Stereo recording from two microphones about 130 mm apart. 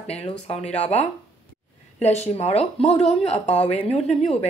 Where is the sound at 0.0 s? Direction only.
50° left (ahead or behind).